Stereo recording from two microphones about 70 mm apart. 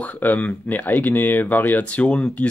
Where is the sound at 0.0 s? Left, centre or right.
Left.